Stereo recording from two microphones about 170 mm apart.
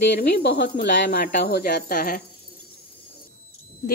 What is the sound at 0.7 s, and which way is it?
A woman's voice, 65° left (ahead or behind).